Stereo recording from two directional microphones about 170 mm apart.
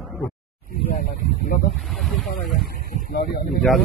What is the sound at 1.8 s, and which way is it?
Speech, centre (ahead or behind).